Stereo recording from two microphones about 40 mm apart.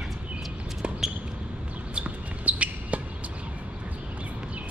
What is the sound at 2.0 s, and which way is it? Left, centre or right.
Basketball bounce, right.